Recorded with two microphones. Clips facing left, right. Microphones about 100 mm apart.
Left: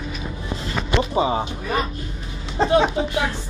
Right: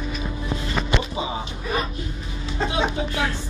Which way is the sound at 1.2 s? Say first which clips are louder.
Left 8 dB; 45° left (ahead or behind).